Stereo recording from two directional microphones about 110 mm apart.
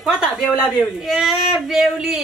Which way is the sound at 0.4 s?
20° left (ahead or behind).